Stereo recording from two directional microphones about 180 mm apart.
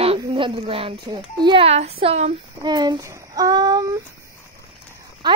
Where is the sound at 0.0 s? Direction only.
30° right (ahead or behind).